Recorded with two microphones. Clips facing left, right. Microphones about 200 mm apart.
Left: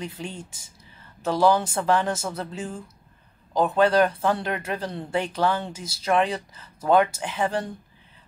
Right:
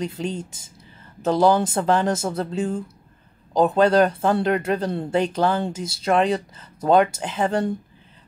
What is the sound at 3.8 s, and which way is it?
Speech, 25° right (ahead or behind).